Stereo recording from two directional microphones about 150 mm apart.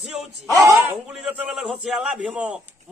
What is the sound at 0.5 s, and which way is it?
Speech, 25° right (ahead or behind).